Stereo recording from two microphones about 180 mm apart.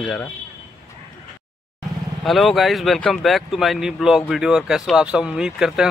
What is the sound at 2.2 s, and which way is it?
Speech, centre (ahead or behind).